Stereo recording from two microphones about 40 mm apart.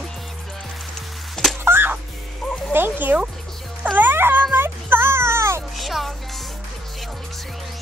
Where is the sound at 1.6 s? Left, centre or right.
Right.